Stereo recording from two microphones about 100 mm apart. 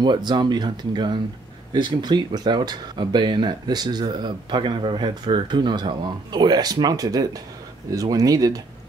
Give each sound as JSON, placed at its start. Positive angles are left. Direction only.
{"t": 0.0, "sound": "speech", "side_deg": -45}